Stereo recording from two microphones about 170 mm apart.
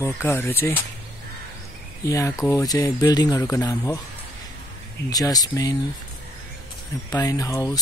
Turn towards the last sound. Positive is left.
turn(degrees=20)  # may be behind; listen again after turning